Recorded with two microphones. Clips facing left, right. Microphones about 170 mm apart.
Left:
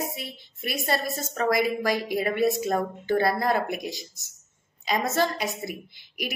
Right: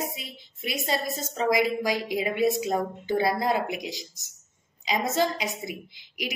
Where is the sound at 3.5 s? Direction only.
50° left (ahead or behind).